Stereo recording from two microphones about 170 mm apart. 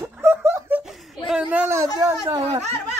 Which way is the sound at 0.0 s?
15° right (ahead or behind).